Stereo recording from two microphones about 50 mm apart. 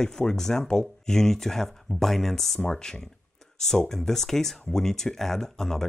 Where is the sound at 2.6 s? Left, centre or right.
Centre.